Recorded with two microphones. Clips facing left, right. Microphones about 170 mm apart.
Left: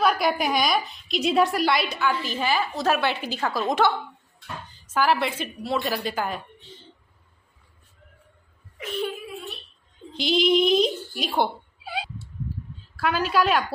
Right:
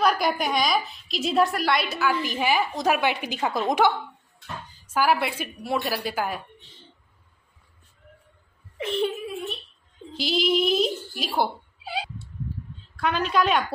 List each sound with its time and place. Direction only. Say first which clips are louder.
0.0 s a woman's voice: left 1 dB; centre (ahead or behind)
8.7 s a child's voice: right 4 dB; 25° right (ahead or behind)
10.1 s a woman's voice: left 3 dB; 5° right (ahead or behind)
12.9 s a woman's voice: left 1 dB; 5° left (ahead or behind)